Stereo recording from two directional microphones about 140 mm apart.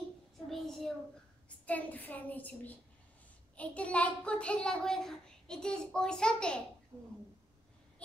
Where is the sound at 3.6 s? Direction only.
10° left (ahead or behind).